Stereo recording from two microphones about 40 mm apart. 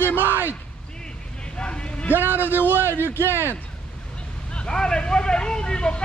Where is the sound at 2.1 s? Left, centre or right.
Right.